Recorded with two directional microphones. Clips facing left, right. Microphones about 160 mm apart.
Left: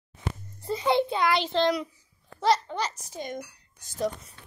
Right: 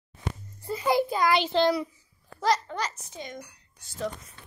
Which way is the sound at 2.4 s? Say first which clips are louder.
Left 2 dB; 30° left (ahead or behind).